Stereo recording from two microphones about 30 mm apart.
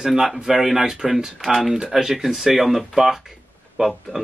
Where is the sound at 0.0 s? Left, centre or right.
Centre.